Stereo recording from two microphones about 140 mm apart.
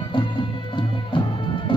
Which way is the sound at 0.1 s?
35° left (ahead or behind).